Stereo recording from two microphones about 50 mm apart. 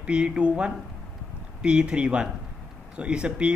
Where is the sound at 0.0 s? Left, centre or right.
Centre.